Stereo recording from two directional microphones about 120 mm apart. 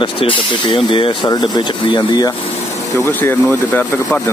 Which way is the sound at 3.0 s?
20° left (ahead or behind).